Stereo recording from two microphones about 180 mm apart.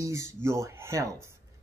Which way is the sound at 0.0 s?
15° right (ahead or behind).